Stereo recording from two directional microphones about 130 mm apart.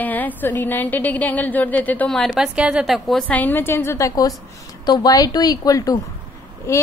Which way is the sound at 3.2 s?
15° left (ahead or behind).